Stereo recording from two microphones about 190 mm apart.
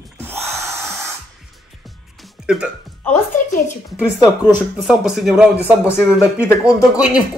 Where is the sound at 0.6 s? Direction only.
15° right (ahead or behind).